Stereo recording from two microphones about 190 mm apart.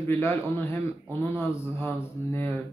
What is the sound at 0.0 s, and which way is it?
Speech, 10° left (ahead or behind).